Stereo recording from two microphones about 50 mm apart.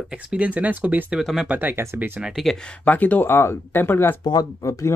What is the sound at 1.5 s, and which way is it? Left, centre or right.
Speech, right.